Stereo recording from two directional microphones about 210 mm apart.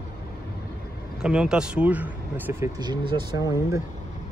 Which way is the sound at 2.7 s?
20° right (ahead or behind).